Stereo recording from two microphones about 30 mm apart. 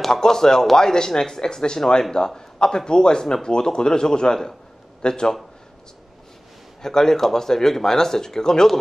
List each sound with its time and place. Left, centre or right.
0.1 s speech: centre
6.8 s speech: centre